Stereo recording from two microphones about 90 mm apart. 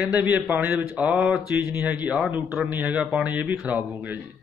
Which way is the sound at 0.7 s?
5° right (ahead or behind).